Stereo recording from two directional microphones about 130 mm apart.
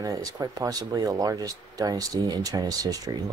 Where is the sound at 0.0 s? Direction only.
25° right (ahead or behind).